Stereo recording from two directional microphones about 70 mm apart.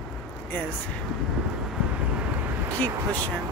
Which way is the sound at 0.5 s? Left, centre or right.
Left.